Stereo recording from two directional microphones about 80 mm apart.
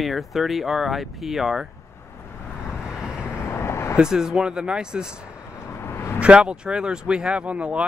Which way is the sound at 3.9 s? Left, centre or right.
Centre.